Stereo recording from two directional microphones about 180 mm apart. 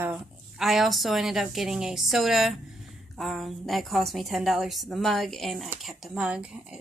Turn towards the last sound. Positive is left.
turn(degrees=-5)  # may be behind; listen again after turning